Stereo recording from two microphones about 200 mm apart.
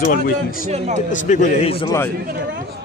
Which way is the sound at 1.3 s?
35° left (ahead or behind).